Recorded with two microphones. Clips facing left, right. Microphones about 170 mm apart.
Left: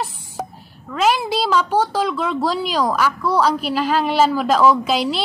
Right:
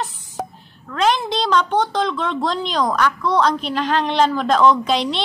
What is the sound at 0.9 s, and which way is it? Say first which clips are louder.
Speech: left 1 dB; 5° left (ahead or behind).